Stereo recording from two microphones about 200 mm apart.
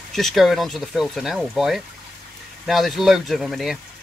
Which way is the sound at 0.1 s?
Centre (ahead or behind).